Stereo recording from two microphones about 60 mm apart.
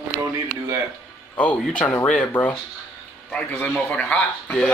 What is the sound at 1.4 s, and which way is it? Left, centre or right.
Speech, left.